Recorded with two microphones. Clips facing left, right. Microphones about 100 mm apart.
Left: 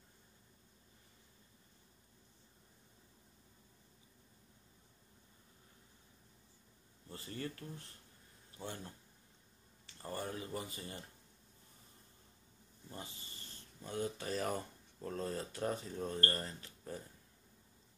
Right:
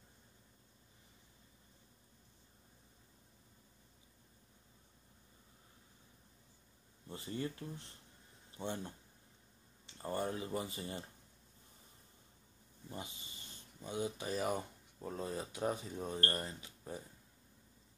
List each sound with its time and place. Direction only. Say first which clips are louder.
7.1 s speech: right 3 dB; 25° right (ahead or behind)
13.7 s speech: even; 15° right (ahead or behind)